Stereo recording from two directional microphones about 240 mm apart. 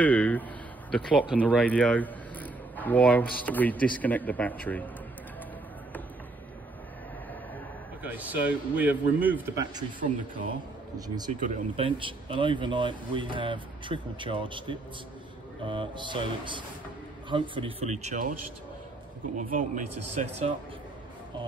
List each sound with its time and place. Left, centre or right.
0.0 s a man's voice: centre
8.0 s a man's voice: centre
9.9 s speech: right
19.3 s speech: right